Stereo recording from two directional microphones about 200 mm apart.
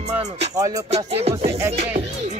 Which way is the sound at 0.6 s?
15° right (ahead or behind).